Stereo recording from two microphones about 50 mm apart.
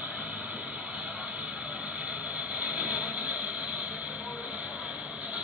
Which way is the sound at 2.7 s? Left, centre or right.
Right.